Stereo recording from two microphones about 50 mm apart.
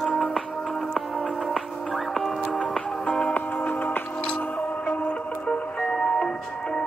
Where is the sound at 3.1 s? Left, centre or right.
Left.